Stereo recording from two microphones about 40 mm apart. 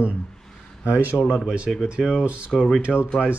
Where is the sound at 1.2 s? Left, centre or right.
Left.